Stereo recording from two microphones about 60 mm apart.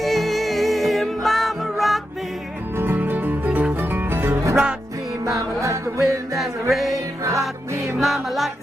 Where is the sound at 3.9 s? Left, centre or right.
Right.